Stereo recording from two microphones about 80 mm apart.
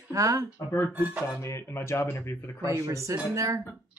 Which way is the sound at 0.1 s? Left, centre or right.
Right.